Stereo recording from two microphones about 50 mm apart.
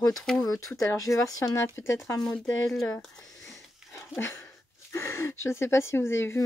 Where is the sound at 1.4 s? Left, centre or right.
Left.